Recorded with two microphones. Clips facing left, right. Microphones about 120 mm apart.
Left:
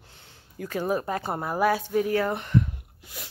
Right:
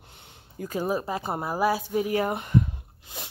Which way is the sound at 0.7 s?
15° right (ahead or behind).